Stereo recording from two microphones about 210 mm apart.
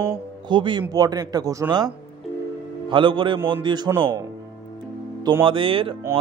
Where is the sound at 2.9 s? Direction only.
25° right (ahead or behind).